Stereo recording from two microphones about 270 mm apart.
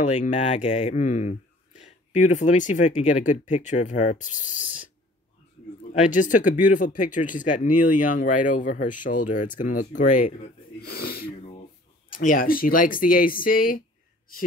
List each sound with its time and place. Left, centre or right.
0.0 s speech: left
5.9 s speech: left